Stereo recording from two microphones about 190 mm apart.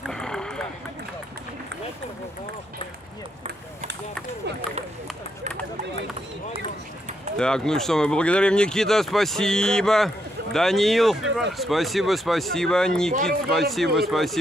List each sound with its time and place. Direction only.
0.0 s a sound: 5° left (ahead or behind)
7.3 s speech: 5° left (ahead or behind)
13.1 s speech: 50° right (ahead or behind)
13.5 s speech: centre (ahead or behind)